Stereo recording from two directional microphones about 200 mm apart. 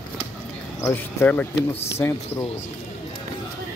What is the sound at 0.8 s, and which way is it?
Speech, 15° left (ahead or behind).